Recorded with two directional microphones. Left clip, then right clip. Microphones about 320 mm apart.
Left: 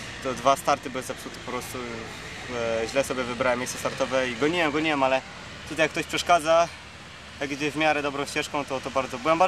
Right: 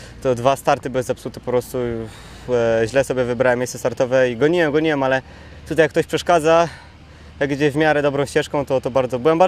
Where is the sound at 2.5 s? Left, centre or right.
Right.